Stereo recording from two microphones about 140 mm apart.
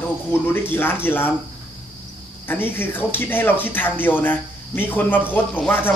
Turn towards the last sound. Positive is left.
turn(degrees=15)  # may be behind; listen again after turning